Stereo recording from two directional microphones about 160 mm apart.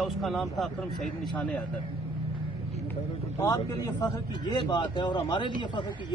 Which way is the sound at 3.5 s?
25° left (ahead or behind).